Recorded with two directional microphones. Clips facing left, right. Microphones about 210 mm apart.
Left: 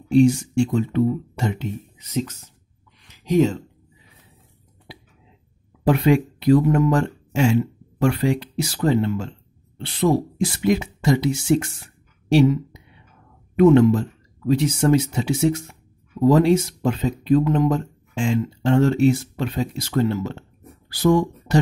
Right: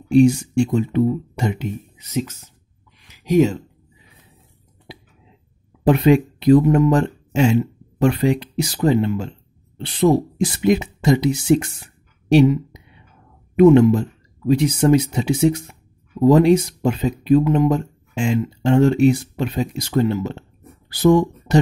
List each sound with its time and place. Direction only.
0.1 s speech: 15° right (ahead or behind)
3.0 s a sound: 10° right (ahead or behind)
4.9 s cough: 20° right (ahead or behind)
5.9 s speech: 20° right (ahead or behind)